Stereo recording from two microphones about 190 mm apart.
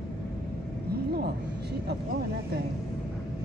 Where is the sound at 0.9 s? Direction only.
60° right (ahead or behind).